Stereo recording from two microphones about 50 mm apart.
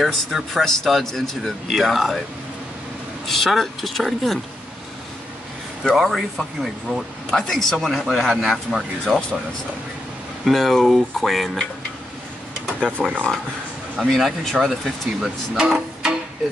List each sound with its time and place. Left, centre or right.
0.0 s speech: centre
3.3 s speech: centre
5.9 s speech: centre
7.3 s speech: centre
10.5 s speech: centre
13.0 s speech: centre
15.6 s music: centre